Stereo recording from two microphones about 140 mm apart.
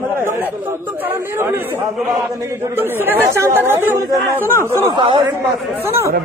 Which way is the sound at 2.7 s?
15° right (ahead or behind).